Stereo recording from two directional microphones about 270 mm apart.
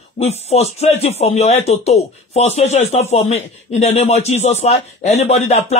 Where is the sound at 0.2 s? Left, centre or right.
Left.